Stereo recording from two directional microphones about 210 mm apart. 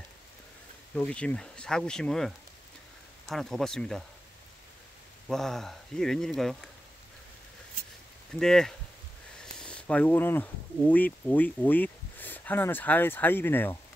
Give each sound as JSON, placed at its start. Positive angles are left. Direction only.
{"t": 0.9, "sound": "speech", "side_deg": 5}
{"t": 5.3, "sound": "speech", "side_deg": 0}
{"t": 8.3, "sound": "speech", "side_deg": 0}